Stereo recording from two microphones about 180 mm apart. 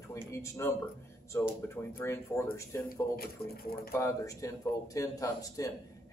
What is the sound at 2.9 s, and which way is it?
Speech, 55° left (ahead or behind).